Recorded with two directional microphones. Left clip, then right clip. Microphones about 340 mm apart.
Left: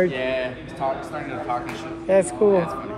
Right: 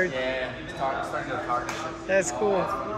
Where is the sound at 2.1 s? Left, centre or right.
Centre.